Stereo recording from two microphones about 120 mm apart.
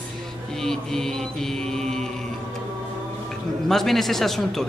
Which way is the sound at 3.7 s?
Centre (ahead or behind).